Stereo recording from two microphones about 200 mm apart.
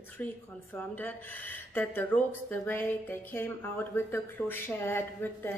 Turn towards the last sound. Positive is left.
turn(degrees=10)  # may be behind; listen again after turning